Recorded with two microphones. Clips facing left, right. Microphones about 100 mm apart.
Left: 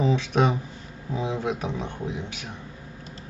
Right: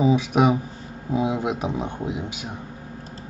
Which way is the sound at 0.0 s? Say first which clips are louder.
Right 4 dB; 10° right (ahead or behind).